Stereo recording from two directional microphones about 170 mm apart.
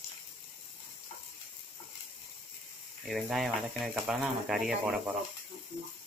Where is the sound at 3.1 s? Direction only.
Centre (ahead or behind).